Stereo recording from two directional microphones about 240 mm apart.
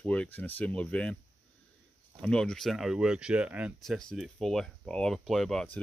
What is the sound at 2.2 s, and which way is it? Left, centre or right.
Speech, centre.